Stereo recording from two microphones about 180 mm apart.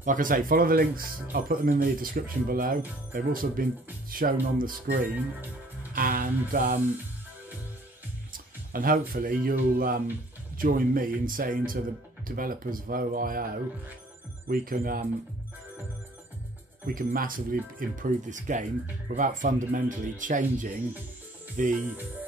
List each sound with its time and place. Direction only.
0.0 s speech: 45° right (ahead or behind)
5.9 s music: 50° right (ahead or behind)
6.5 s speech: 50° right (ahead or behind)
8.3 s speech: 50° right (ahead or behind)
14.5 s speech: 50° right (ahead or behind)
16.8 s speech: 50° right (ahead or behind)